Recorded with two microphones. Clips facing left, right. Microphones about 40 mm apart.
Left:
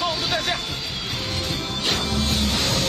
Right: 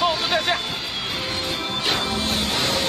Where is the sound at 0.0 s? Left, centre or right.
Right.